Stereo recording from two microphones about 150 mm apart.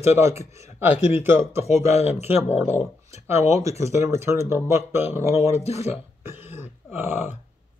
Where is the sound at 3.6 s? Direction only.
20° right (ahead or behind).